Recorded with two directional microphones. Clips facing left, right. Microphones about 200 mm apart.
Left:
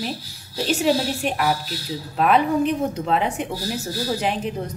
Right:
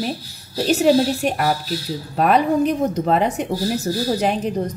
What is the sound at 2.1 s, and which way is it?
A woman's voice, 45° right (ahead or behind).